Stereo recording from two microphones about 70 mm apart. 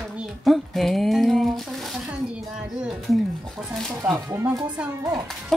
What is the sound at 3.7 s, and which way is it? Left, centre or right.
Speech, centre.